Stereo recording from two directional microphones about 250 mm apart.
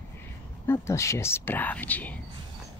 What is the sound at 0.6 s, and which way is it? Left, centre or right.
Speech, centre.